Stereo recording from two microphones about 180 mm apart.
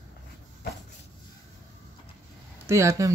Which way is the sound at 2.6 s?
15° right (ahead or behind).